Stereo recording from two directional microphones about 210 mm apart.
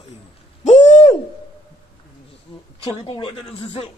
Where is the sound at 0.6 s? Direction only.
35° left (ahead or behind).